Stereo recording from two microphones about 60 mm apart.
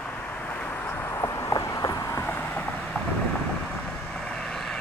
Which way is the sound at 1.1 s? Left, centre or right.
Left.